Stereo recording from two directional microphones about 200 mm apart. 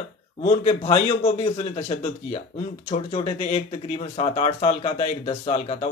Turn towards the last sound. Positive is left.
turn(degrees=30)  # may be behind; listen again after turning